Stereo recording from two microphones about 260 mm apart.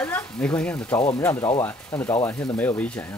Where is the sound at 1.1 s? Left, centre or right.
Centre.